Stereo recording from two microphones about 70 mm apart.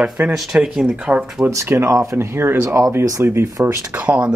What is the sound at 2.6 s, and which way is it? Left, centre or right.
Speech, right.